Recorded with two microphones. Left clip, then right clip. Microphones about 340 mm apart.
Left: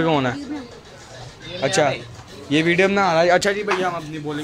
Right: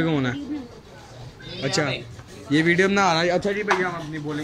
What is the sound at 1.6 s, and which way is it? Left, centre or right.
Speech, centre.